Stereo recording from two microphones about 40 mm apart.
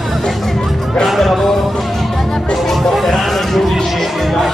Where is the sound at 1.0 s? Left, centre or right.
Centre.